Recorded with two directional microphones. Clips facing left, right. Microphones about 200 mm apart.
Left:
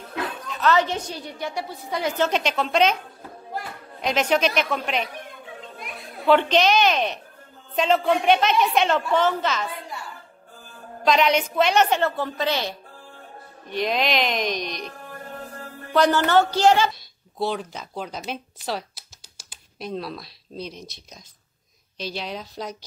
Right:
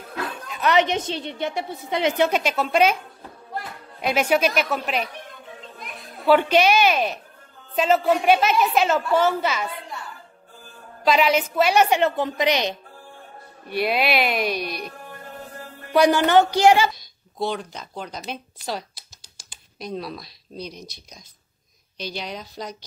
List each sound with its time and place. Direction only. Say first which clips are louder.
0.0 s speech: left 1 dB; 10° right (ahead or behind)
2.2 s a woman's voice: right 1 dB; 10° right (ahead or behind)
11.1 s a woman's voice: right 1 dB; 5° right (ahead or behind)
17.4 s a woman's voice: even; 5° left (ahead or behind)